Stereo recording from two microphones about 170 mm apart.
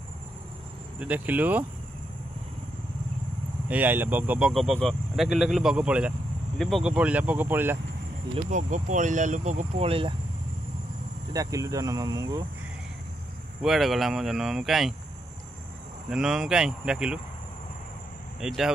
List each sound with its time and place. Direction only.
0.9 s speech: 10° right (ahead or behind)
3.6 s speech: 10° right (ahead or behind)
8.5 s speech: 45° right (ahead or behind)
11.3 s speech: 20° right (ahead or behind)
13.6 s speech: centre (ahead or behind)
16.1 s speech: 5° right (ahead or behind)
18.4 s speech: centre (ahead or behind)